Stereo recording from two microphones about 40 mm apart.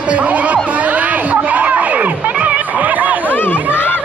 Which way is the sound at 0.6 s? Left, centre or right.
Right.